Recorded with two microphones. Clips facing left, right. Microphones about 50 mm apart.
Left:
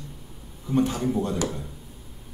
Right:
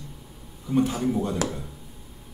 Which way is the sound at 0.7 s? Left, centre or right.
Centre.